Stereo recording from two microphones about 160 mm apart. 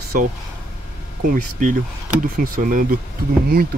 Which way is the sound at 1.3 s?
55° right (ahead or behind).